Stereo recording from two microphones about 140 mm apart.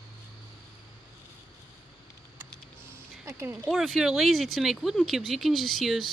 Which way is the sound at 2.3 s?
15° right (ahead or behind).